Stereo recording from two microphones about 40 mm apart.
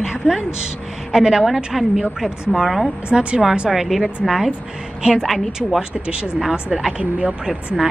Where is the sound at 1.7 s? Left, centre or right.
Centre.